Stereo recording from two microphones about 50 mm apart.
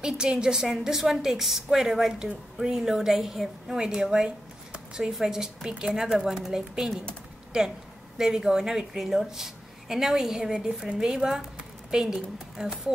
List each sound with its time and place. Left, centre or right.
0.0 s a woman's voice: centre
4.7 s a sound: centre
5.2 s a woman's voice: centre
8.2 s a woman's voice: centre